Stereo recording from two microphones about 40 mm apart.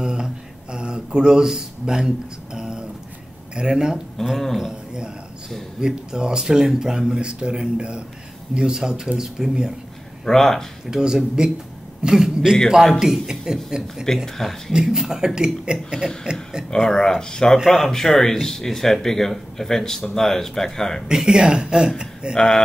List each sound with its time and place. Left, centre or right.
0.0 s a sound: centre
3.5 s a man's voice: centre
10.2 s speech: centre
10.9 s a man's voice: centre
14.0 s speech: centre
14.7 s a man's voice: centre
16.7 s speech: centre
17.6 s speech: centre
21.1 s speech: centre
22.3 s speech: centre